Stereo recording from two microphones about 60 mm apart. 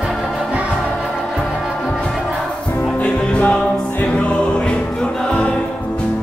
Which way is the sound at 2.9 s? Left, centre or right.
Left.